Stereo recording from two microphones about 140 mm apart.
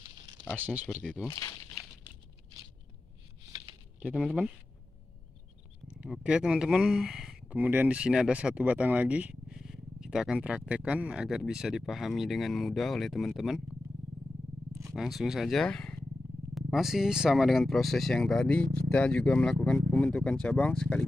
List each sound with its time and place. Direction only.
0.9 s speech: 5° right (ahead or behind)
1.3 s speech: 25° left (ahead or behind)
4.0 s speech: 5° right (ahead or behind)
5.9 s speech: 5° right (ahead or behind)
15.0 s speech: centre (ahead or behind)